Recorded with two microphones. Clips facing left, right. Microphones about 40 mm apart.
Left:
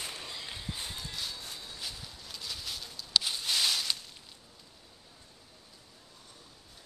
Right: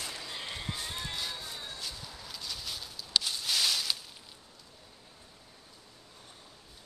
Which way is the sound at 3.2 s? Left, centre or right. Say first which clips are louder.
Even; centre.